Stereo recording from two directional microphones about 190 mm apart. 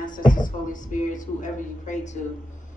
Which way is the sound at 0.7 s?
40° left (ahead or behind).